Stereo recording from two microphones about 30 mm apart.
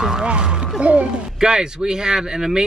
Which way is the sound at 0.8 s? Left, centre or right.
Right.